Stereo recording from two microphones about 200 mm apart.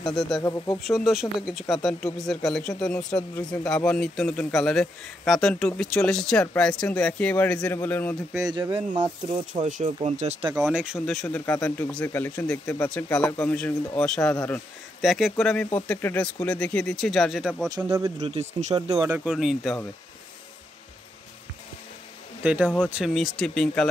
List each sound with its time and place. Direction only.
0.0 s a man's voice: centre (ahead or behind)
0.4 s speech: 20° left (ahead or behind)
0.8 s a man's voice: centre (ahead or behind)
8.4 s speech: 20° right (ahead or behind)
9.5 s speech: 40° right (ahead or behind)
10.5 s a man's voice: 5° right (ahead or behind)
17.6 s speech: 15° right (ahead or behind)
18.2 s speech: 35° right (ahead or behind)
18.8 s speech: 15° right (ahead or behind)
19.3 s a man's voice: centre (ahead or behind)
22.4 s a man's voice: 5° right (ahead or behind)